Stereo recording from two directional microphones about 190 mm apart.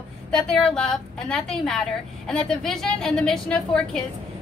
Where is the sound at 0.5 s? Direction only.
Centre (ahead or behind).